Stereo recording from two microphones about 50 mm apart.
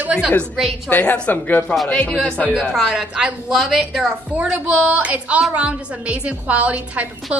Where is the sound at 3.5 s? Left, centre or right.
Centre.